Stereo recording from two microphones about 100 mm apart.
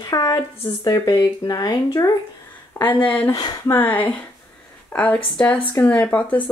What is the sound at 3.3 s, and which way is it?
Speech, 40° left (ahead or behind).